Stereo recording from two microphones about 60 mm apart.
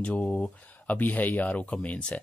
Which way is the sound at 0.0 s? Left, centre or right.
Centre.